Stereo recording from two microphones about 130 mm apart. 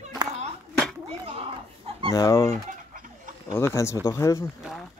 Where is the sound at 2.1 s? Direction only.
25° left (ahead or behind).